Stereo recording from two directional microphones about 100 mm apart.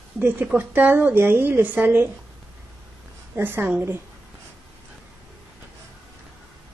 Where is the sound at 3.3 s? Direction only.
20° right (ahead or behind).